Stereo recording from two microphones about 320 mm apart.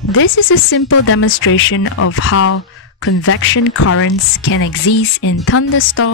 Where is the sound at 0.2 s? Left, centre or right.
Left.